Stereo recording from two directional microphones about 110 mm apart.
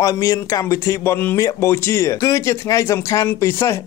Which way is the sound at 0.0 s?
30° left (ahead or behind).